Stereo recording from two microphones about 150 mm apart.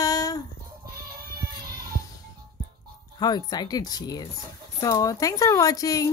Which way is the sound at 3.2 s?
25° left (ahead or behind).